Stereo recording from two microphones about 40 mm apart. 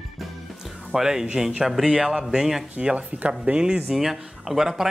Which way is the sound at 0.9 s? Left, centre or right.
Centre.